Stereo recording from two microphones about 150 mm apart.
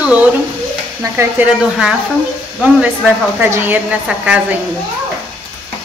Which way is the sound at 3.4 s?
15° right (ahead or behind).